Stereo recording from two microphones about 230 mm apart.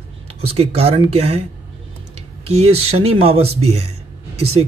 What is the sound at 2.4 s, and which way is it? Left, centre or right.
Speech, right.